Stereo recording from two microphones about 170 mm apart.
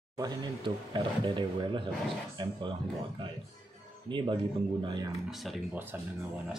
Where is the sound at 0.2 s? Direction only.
20° right (ahead or behind).